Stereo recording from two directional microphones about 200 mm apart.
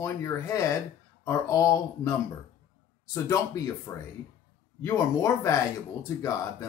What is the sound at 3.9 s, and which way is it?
Speech, 10° left (ahead or behind).